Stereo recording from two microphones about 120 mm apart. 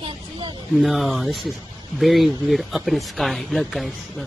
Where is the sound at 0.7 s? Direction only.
Centre (ahead or behind).